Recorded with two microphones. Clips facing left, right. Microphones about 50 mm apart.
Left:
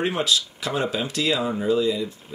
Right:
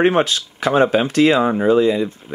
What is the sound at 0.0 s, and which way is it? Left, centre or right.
Speech, right.